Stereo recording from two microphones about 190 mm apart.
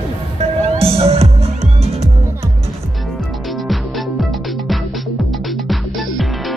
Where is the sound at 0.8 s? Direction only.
30° right (ahead or behind).